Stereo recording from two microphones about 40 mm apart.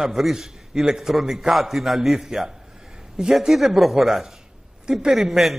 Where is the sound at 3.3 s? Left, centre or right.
Centre.